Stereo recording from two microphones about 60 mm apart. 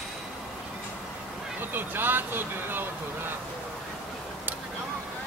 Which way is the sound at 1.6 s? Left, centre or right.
Right.